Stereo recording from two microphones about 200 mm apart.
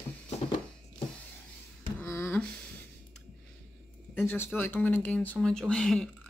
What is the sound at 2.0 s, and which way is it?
Beatboxing, 10° left (ahead or behind).